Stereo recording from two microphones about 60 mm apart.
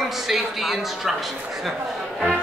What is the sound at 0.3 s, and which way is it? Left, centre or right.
Speech, centre.